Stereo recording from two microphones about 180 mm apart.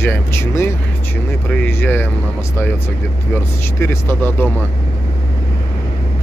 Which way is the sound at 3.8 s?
10° left (ahead or behind).